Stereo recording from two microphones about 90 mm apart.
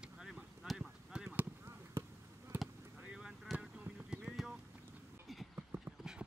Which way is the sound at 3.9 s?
15° right (ahead or behind).